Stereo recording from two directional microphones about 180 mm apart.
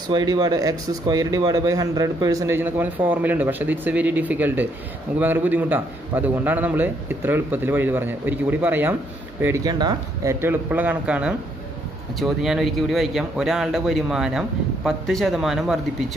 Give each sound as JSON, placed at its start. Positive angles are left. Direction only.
{"t": 0.1, "sound": "speech", "side_deg": -20}
{"t": 10.4, "sound": "speech", "side_deg": -10}